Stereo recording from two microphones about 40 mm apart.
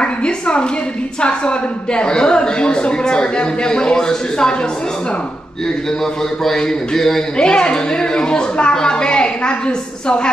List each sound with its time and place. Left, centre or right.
0.0 s a sound: left
1.2 s a woman's voice: left
6.4 s a man's voice: centre
7.3 s a woman's voice: left